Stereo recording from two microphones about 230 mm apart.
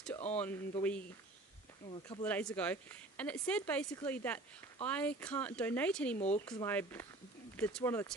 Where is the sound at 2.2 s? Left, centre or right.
Centre.